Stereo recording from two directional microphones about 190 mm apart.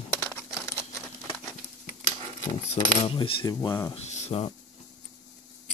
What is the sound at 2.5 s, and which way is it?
Speech, 25° left (ahead or behind).